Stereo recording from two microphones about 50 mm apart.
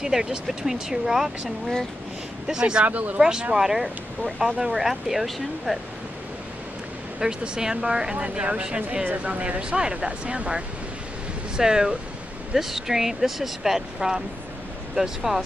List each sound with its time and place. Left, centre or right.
0.0 s speech: centre
2.9 s speech: right
3.2 s speech: centre
7.2 s speech: centre